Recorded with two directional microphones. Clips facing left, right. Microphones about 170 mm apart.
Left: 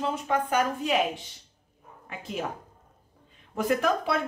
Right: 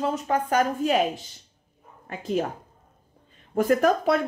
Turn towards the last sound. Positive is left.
turn(degrees=-45)  # may be behind; listen again after turning